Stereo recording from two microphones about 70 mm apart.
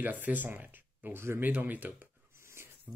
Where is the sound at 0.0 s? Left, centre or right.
Right.